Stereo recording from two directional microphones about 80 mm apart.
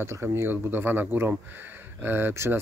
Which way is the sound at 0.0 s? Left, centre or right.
Right.